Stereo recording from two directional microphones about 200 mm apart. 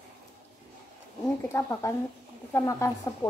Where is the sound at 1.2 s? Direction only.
15° left (ahead or behind).